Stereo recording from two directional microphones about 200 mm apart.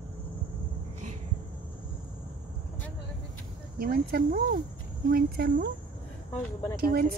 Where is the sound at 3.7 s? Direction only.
50° right (ahead or behind).